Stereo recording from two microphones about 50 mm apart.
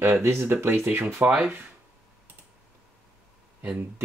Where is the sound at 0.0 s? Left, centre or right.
Right.